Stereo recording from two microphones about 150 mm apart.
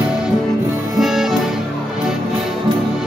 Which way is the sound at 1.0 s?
Centre (ahead or behind).